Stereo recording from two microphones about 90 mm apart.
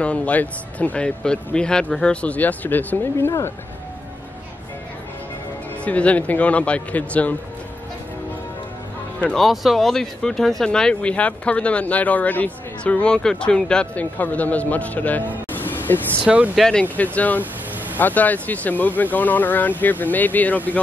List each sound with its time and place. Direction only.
0.0 s speech: 15° left (ahead or behind)
2.2 s speech: 20° left (ahead or behind)
5.9 s speech: 15° left (ahead or behind)
9.3 s speech: centre (ahead or behind); by 16.0 s 20° left (ahead or behind)
16.5 s speech: 5° left (ahead or behind)
16.9 s speech: 15° left (ahead or behind)